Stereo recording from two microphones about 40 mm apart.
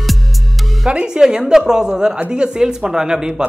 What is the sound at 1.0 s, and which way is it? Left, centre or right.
A woman's voice, centre.